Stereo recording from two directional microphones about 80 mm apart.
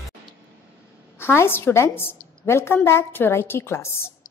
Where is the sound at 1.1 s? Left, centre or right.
Left.